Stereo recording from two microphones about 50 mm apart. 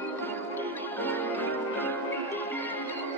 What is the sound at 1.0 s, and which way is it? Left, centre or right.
Music, left.